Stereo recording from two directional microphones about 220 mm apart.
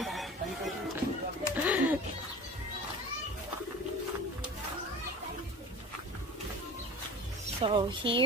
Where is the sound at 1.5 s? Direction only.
5° right (ahead or behind).